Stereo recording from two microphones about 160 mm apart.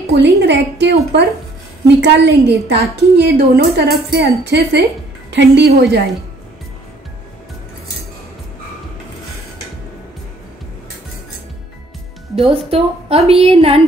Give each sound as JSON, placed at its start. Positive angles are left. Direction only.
{"t": 0.2, "sound": "a woman's voice", "side_deg": -90}
{"t": 2.0, "sound": "a woman's voice", "side_deg": -90}
{"t": 12.4, "sound": "a woman's voice", "side_deg": -40}